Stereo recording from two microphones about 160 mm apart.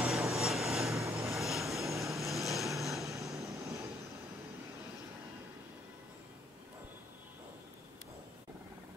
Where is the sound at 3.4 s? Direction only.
20° right (ahead or behind).